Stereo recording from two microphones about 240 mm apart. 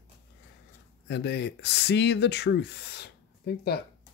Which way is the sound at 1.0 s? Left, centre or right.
Left.